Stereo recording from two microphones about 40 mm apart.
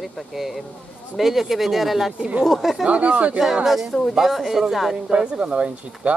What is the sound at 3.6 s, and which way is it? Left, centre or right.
Speech, centre.